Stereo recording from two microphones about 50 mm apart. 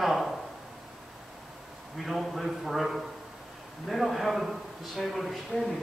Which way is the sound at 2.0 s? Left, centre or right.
Centre.